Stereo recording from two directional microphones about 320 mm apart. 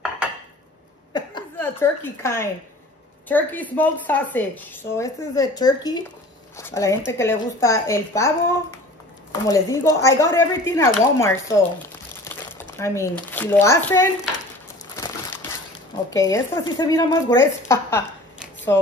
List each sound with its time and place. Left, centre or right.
1.1 s a sound: centre
3.3 s a woman's voice: centre
9.3 s a woman's voice: centre
12.7 s a woman's voice: centre
16.1 s a woman's voice: centre